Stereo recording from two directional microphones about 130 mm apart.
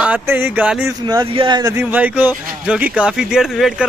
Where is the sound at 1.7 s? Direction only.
15° right (ahead or behind).